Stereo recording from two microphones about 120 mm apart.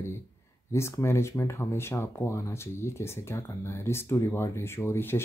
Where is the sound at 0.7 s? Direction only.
25° left (ahead or behind).